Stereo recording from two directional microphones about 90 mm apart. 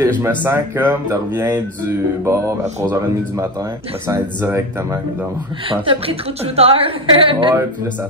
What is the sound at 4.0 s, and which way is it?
Speech, 25° right (ahead or behind).